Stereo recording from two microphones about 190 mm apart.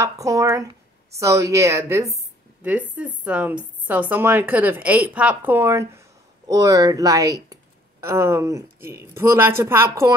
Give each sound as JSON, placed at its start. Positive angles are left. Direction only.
{"t": 0.0, "sound": "speech", "side_deg": -15}